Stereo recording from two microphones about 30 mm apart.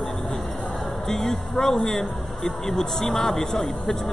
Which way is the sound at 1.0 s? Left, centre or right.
Centre.